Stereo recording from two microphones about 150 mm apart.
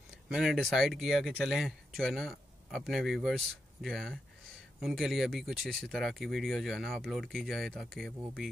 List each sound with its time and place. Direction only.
0.3 s speech: centre (ahead or behind)